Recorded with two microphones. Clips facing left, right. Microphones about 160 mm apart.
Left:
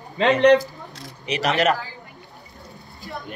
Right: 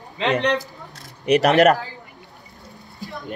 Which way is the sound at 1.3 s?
55° right (ahead or behind).